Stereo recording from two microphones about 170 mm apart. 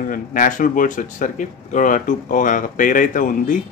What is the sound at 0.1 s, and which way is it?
Speech, 50° left (ahead or behind).